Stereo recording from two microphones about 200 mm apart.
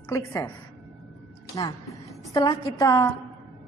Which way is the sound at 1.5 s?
15° left (ahead or behind).